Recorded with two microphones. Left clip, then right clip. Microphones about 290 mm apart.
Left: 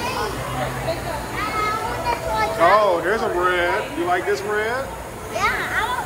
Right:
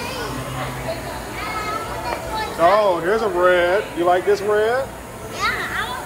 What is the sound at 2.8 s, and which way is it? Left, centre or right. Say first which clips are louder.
Speech: right 1 dB; centre.